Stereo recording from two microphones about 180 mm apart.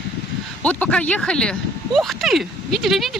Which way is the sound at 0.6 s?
5° left (ahead or behind).